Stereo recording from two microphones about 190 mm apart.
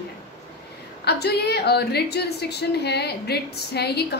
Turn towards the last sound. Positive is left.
turn(degrees=60)  # may be behind; listen again after turning